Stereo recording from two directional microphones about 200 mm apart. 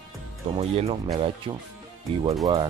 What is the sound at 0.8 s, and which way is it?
Speech, 30° right (ahead or behind).